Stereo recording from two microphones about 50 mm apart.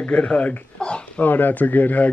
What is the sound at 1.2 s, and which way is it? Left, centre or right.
Speech, left.